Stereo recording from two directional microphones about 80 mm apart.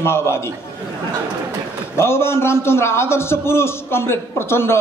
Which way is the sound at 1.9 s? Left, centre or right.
Left.